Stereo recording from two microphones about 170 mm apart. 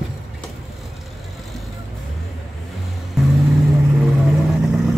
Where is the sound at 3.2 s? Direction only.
Centre (ahead or behind).